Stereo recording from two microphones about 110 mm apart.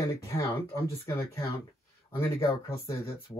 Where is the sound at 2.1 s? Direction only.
25° left (ahead or behind).